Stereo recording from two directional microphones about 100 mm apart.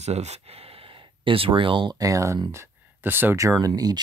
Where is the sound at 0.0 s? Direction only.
90° right; by 2.0 s 55° right (ahead or behind).